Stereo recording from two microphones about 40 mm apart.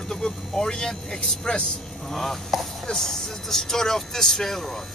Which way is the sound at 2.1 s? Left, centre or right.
Centre.